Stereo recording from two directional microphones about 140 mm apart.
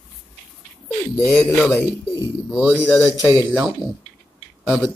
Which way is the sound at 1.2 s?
Centre (ahead or behind).